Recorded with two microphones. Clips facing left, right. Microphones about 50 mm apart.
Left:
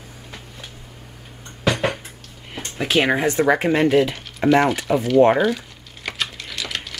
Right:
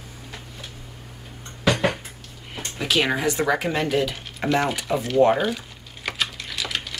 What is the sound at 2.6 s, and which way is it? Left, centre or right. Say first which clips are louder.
Speech: left 3 dB; left.